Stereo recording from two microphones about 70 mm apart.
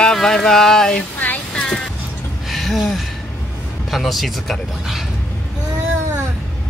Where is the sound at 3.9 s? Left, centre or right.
Centre.